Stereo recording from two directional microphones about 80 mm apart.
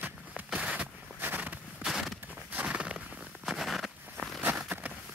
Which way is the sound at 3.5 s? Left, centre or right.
Centre.